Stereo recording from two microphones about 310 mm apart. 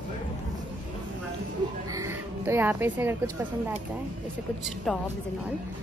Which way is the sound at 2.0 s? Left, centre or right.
Centre.